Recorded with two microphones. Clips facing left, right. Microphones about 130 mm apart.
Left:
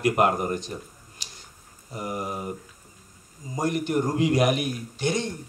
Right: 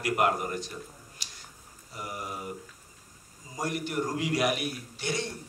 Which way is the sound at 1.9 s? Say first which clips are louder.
Left 7 dB; 25° left (ahead or behind).